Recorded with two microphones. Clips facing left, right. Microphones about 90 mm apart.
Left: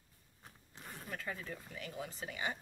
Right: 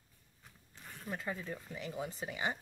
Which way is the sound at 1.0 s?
20° right (ahead or behind).